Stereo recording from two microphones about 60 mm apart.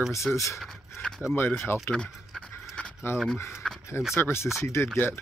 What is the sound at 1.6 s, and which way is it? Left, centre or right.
Speech, left.